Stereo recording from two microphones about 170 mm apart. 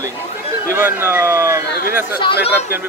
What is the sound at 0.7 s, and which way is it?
Speech, 15° right (ahead or behind).